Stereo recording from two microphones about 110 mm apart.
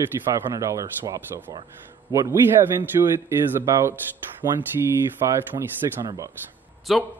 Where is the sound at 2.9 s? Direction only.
40° right (ahead or behind).